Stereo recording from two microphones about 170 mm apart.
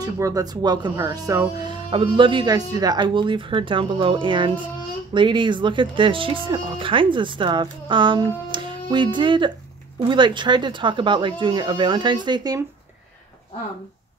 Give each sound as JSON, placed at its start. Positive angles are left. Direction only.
{"t": 0.0, "sound": "speech", "side_deg": -20}